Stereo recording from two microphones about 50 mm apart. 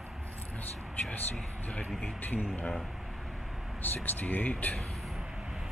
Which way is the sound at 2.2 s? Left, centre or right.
Left.